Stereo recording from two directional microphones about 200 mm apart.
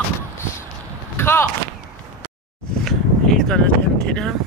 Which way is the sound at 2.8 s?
Centre (ahead or behind).